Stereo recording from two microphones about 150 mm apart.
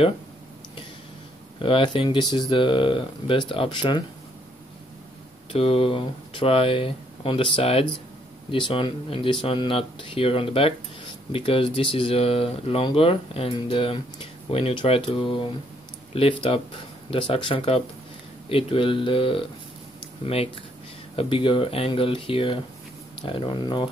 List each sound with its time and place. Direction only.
1.6 s speech: 35° left (ahead or behind)
5.5 s speech: 40° left (ahead or behind)
21.2 s speech: 35° left (ahead or behind)